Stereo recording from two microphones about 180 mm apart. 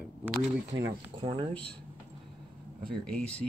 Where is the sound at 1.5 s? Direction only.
5° left (ahead or behind).